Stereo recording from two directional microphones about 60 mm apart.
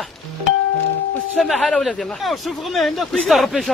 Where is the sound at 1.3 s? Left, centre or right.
Centre.